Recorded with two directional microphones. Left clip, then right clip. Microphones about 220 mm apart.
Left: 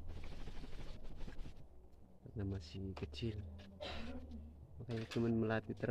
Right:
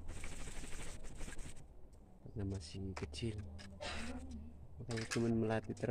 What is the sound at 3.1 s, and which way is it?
Speech, 30° left (ahead or behind).